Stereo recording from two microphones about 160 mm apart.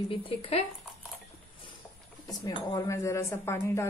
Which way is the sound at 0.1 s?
35° left (ahead or behind).